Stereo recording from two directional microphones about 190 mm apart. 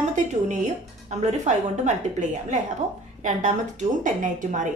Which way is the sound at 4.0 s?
40° right (ahead or behind).